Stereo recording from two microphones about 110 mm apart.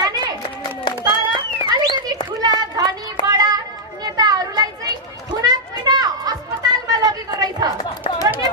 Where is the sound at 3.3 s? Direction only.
35° right (ahead or behind).